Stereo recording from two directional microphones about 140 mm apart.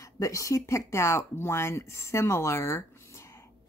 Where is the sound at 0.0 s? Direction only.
25° left (ahead or behind).